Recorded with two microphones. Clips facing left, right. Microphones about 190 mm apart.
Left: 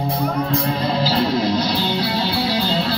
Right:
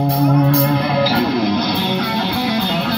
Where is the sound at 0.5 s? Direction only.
75° right (ahead or behind).